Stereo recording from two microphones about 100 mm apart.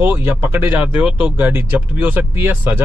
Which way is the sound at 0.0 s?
20° right (ahead or behind).